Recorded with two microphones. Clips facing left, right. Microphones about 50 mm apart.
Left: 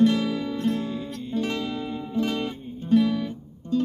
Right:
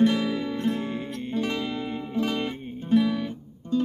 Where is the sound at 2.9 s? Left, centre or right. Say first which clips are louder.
Left 1 dB; centre.